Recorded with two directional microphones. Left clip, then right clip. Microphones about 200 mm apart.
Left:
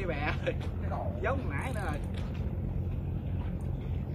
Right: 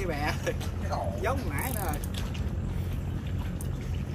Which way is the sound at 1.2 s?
25° right (ahead or behind).